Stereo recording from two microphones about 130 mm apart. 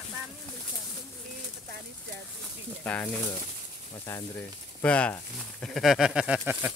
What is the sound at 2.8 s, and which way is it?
Speech, 15° left (ahead or behind).